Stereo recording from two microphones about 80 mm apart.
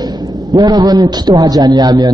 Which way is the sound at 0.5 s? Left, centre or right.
Right.